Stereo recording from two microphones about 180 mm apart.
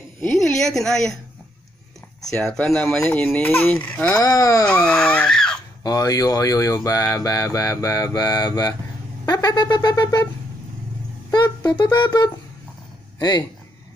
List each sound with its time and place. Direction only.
0.2 s a woman's voice: 5° left (ahead or behind)
2.3 s a woman's voice: 5° left (ahead or behind)
4.2 s speech: 20° left (ahead or behind)
4.6 s baby cry: 5° left (ahead or behind)
5.9 s speech: 20° left (ahead or behind)
11.2 s speech: 20° left (ahead or behind)